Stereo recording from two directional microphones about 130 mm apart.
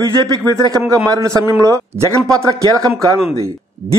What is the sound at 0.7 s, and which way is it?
A man's voice, 30° right (ahead or behind).